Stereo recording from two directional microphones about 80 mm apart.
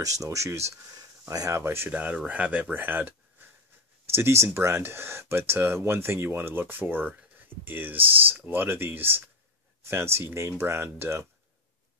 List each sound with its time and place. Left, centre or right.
0.0 s speech: right
1.6 s speech: right
1.9 s speech: centre; by 11.2 s right